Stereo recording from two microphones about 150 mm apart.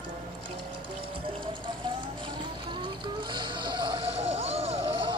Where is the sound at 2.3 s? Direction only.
30° right (ahead or behind).